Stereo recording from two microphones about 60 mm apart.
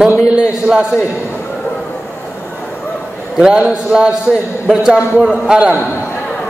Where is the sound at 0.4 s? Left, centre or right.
Centre.